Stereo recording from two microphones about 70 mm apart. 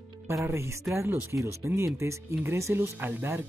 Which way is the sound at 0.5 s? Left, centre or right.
Right.